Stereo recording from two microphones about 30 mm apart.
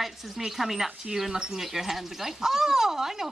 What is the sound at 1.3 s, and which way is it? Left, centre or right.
Speech, right.